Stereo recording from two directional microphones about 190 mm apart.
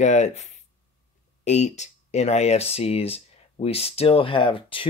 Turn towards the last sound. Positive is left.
turn(degrees=25)  # may be behind; listen again after turning